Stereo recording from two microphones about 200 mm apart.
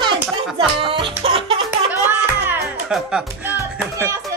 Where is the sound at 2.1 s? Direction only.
5° right (ahead or behind).